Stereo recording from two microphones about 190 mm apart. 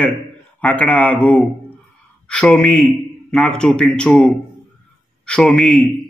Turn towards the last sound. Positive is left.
turn(degrees=5)  # may be behind; listen again after turning